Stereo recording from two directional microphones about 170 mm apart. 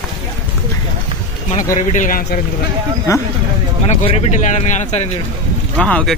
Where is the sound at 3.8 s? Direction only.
40° left (ahead or behind).